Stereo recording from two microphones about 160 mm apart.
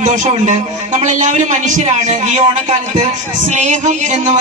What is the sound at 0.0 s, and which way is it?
Speech, 50° right (ahead or behind).